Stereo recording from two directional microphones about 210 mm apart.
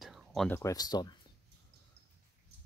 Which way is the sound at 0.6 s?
15° left (ahead or behind).